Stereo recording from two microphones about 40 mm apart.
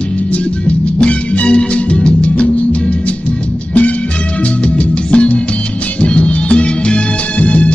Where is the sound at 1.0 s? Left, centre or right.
Left.